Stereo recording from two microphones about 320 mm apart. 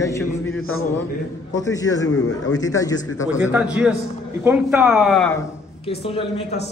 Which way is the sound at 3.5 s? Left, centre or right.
Centre.